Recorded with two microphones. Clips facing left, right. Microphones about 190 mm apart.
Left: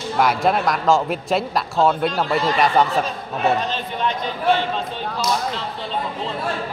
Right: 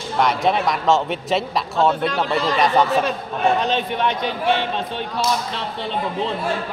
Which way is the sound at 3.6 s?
65° right (ahead or behind).